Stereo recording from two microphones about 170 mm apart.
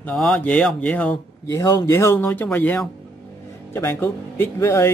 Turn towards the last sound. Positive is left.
turn(degrees=15)  # may be behind; listen again after turning